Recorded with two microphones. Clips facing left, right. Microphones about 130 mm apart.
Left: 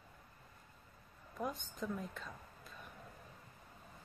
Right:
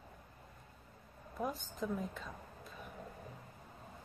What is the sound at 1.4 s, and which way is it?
Speech, centre (ahead or behind).